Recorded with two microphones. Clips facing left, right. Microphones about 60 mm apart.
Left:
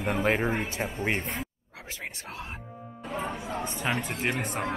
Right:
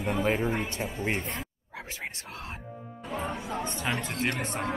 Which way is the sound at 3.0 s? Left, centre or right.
Centre.